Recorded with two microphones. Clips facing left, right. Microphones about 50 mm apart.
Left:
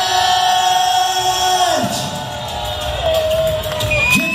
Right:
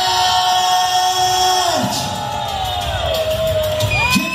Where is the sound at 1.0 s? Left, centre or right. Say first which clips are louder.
Right 1 dB; right.